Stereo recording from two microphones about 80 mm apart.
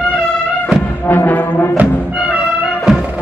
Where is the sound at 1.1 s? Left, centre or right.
Left.